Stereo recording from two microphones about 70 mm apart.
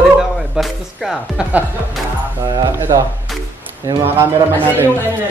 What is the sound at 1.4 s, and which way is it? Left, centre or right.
Speech, centre.